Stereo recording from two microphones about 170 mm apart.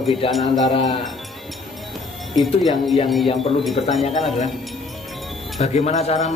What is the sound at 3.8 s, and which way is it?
Speech, 35° left (ahead or behind).